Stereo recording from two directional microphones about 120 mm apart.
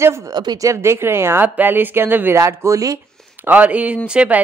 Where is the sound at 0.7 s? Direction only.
20° right (ahead or behind).